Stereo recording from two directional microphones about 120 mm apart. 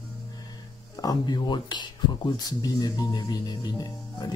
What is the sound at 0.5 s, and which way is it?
Speech, 35° left (ahead or behind).